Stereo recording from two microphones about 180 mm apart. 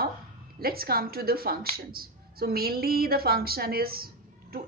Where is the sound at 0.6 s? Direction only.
55° right (ahead or behind).